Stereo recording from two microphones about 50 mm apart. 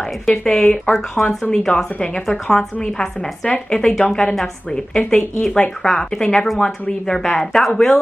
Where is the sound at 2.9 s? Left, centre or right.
Left.